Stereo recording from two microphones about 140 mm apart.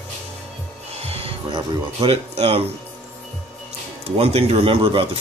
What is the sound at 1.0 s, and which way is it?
Music, 45° right (ahead or behind).